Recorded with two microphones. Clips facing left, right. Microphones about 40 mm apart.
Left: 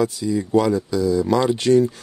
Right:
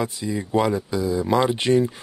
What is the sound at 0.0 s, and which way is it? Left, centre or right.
Speech, right.